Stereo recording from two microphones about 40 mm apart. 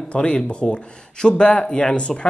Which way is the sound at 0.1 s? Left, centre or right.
Left.